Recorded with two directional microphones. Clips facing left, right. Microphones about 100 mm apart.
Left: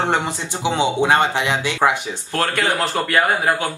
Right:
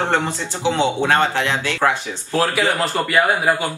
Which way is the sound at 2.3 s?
5° right (ahead or behind).